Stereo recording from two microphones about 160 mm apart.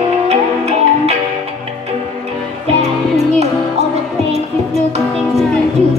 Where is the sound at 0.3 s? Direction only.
40° right (ahead or behind).